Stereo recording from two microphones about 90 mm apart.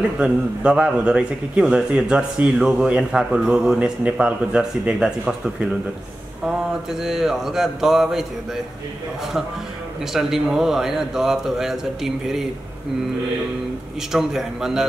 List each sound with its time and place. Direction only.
0.2 s a man's voice: 10° right (ahead or behind)
10.1 s a man's voice: 5° right (ahead or behind)
14.1 s a man's voice: 5° right (ahead or behind)